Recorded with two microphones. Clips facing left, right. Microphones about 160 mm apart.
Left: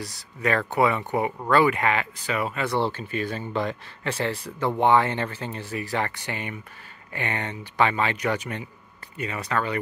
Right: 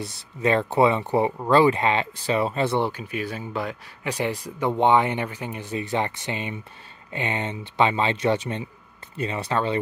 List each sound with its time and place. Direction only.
0.0 s speech: 25° right (ahead or behind)
2.8 s speech: 10° right (ahead or behind); by 9.8 s 25° right (ahead or behind)